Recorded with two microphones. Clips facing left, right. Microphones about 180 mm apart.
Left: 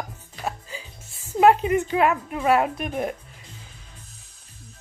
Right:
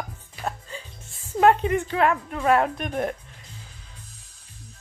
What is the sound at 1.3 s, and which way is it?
Speech, 10° left (ahead or behind).